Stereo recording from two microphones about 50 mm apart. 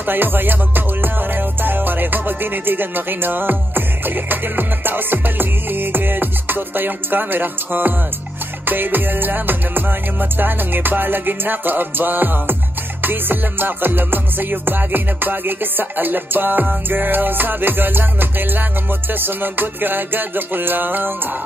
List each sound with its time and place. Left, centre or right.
0.0 s music: right